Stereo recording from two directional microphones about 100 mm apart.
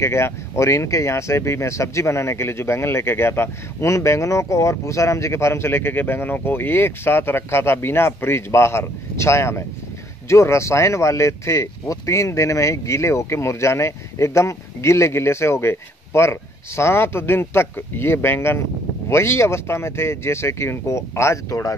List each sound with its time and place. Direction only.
0.0 s speech: 25° left (ahead or behind)